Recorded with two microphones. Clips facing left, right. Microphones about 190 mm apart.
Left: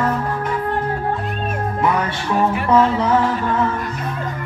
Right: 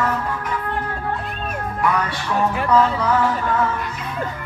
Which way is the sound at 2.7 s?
25° left (ahead or behind).